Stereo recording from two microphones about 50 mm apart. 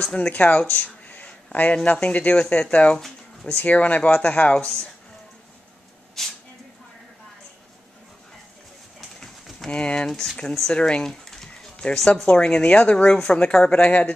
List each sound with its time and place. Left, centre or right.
0.0 s speech: centre
0.3 s speech: left
6.2 s a sound: centre
9.7 s speech: left
10.0 s speech: centre
10.7 s speech: centre